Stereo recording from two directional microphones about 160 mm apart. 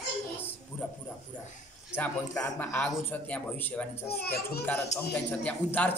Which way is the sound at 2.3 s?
15° left (ahead or behind).